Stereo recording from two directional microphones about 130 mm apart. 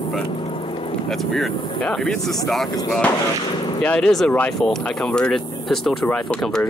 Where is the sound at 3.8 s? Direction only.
10° left (ahead or behind).